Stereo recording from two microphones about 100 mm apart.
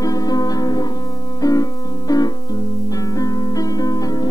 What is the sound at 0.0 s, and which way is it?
Music, 40° left (ahead or behind).